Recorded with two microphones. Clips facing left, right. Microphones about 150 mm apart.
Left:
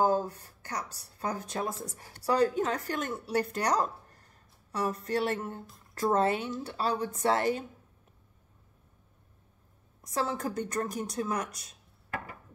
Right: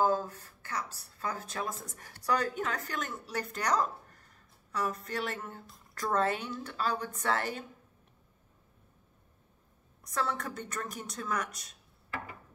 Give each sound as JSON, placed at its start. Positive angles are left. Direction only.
{"t": 0.0, "sound": "a woman's voice", "side_deg": 35}
{"t": 10.1, "sound": "a woman's voice", "side_deg": 30}